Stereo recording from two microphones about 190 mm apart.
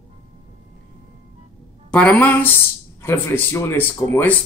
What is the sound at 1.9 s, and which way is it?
Speech, 5° left (ahead or behind).